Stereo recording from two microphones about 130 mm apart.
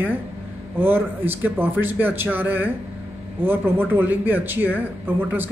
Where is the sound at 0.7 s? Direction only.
15° right (ahead or behind).